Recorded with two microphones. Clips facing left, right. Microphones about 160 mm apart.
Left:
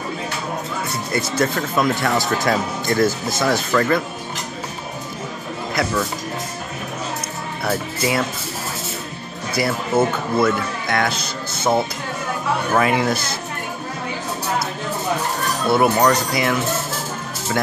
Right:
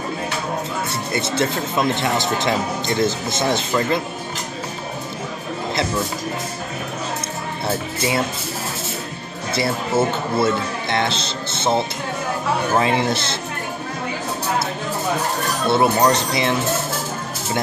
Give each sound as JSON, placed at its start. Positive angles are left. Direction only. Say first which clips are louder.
{"t": 1.1, "sound": "speech", "louder": "left 1 dB", "side_deg": -25}
{"t": 7.6, "sound": "speech", "louder": "left 1 dB", "side_deg": -25}
{"t": 9.5, "sound": "speech", "louder": "left 1 dB", "side_deg": -25}
{"t": 15.6, "sound": "speech", "louder": "left 1 dB", "side_deg": -25}